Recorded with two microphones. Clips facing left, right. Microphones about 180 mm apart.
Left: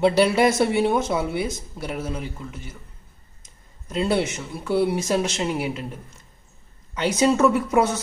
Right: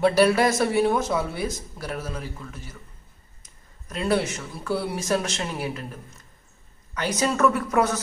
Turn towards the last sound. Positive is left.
turn(degrees=25)  # may be behind; listen again after turning